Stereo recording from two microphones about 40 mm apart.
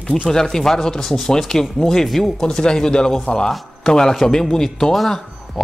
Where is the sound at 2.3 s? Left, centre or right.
Centre.